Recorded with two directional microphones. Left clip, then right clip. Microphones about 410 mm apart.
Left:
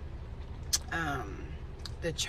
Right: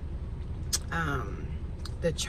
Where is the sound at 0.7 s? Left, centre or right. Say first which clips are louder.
Right 1 dB; centre.